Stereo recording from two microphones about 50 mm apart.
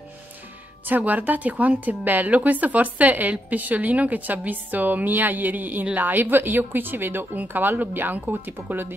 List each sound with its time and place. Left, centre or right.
0.8 s speech: right